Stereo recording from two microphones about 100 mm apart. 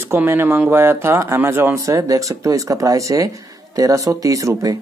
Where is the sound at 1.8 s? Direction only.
35° right (ahead or behind).